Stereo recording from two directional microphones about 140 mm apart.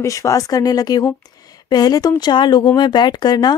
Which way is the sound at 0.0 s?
25° left (ahead or behind).